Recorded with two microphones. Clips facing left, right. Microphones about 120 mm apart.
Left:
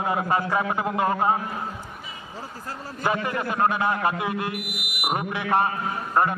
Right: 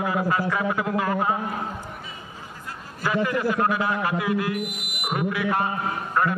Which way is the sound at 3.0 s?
25° left (ahead or behind).